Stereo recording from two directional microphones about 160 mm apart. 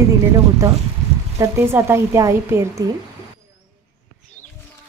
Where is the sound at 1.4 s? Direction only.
15° right (ahead or behind).